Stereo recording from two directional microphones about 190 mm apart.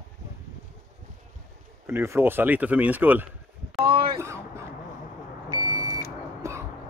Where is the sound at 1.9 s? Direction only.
10° right (ahead or behind).